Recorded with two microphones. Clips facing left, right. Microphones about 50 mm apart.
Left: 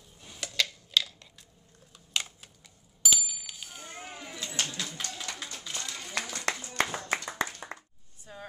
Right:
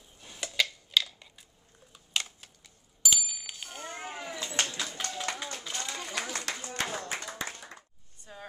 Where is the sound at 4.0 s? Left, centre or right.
Right.